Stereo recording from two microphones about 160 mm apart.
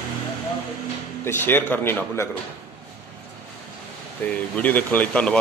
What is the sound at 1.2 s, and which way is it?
A man's voice, 15° left (ahead or behind).